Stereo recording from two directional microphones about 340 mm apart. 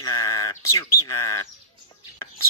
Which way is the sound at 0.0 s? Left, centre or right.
Centre.